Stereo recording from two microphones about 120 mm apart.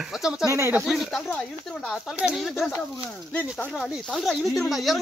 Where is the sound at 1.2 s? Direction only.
10° left (ahead or behind).